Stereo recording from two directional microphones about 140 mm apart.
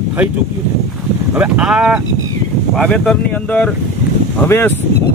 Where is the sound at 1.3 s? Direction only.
5° right (ahead or behind).